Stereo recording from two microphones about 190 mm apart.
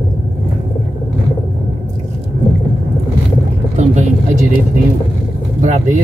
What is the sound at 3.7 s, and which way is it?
Vehicle, 35° right (ahead or behind).